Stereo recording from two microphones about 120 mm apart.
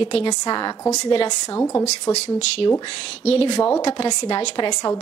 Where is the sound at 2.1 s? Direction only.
65° left (ahead or behind).